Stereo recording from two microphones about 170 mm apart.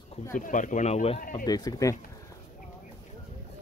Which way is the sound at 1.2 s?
55° left (ahead or behind).